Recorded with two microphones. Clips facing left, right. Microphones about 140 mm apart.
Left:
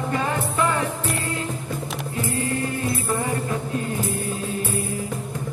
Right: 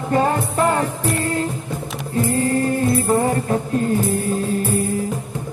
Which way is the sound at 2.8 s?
55° right (ahead or behind).